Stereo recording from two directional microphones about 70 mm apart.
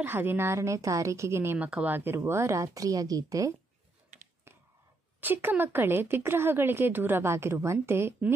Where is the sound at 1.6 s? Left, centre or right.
Right.